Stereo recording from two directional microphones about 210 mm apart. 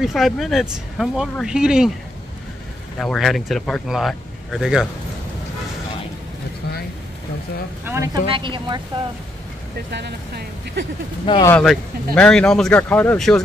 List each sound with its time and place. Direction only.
0.0 s speech: centre (ahead or behind)
3.0 s speech: centre (ahead or behind)
7.8 s speech: 15° right (ahead or behind)
9.8 s speech: 55° right (ahead or behind)
11.2 s speech: 20° left (ahead or behind)
11.5 s speech: centre (ahead or behind)